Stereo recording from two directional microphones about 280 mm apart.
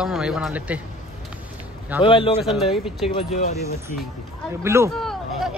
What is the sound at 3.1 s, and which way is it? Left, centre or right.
Speech, left.